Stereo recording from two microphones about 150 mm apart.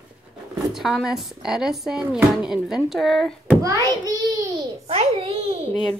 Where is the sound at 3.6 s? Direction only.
20° right (ahead or behind).